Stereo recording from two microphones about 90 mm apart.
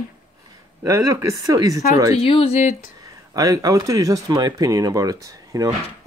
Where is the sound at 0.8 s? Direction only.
40° right (ahead or behind).